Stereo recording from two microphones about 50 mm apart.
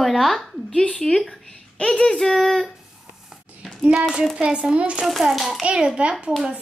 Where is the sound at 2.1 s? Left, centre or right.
Centre.